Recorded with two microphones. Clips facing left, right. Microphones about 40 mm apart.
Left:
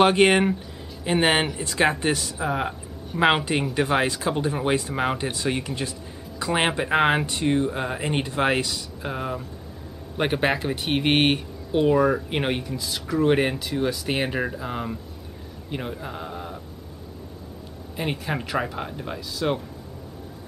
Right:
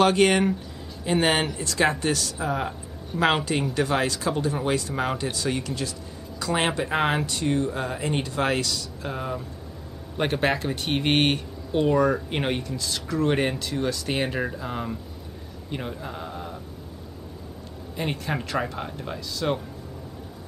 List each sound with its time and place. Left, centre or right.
0.0 s speech: left; by 16.5 s centre
17.9 s speech: centre